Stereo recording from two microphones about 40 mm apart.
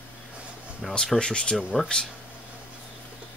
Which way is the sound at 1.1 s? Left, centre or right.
Left.